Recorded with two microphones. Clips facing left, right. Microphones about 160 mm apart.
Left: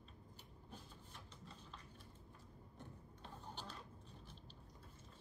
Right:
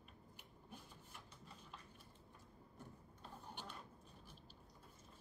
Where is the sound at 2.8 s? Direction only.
10° right (ahead or behind).